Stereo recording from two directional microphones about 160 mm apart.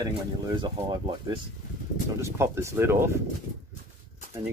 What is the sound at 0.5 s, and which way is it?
Speech, 30° right (ahead or behind).